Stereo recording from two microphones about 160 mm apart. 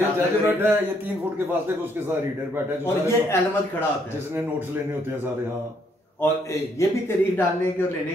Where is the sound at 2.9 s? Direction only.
15° left (ahead or behind).